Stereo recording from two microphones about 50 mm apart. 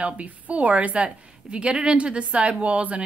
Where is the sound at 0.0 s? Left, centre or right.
Right.